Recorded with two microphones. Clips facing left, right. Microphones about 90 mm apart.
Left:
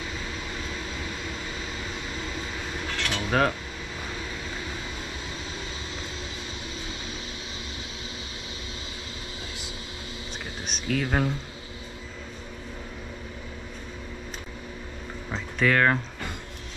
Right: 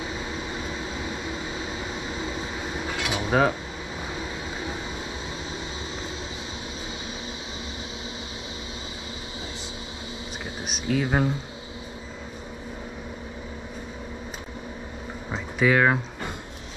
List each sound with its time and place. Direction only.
0.0 s vehicle: 20° right (ahead or behind)
10.7 s speech: 10° right (ahead or behind)
15.3 s a sound: 10° right (ahead or behind)